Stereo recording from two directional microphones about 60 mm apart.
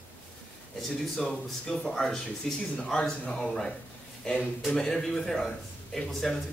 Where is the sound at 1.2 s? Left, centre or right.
Centre.